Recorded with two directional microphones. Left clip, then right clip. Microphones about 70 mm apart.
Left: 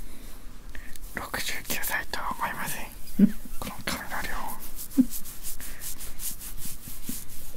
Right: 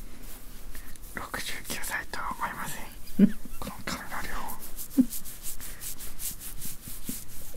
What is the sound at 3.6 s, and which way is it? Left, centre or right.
Whispering, left.